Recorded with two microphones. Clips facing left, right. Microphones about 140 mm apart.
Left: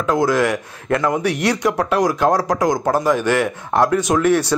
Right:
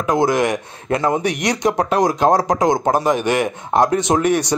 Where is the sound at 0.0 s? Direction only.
15° right (ahead or behind).